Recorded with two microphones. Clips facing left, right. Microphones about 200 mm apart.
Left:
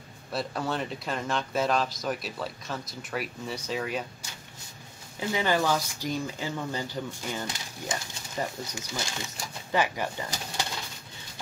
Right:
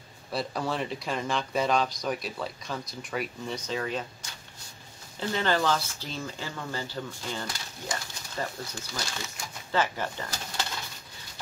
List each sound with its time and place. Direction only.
0.3 s speech: centre (ahead or behind)